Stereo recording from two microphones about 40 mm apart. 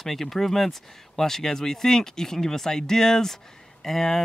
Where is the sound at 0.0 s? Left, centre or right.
Centre.